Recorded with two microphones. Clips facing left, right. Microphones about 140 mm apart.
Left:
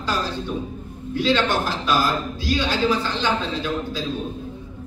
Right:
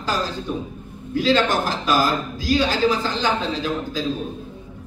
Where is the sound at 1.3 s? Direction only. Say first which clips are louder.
Right 2 dB; 40° right (ahead or behind).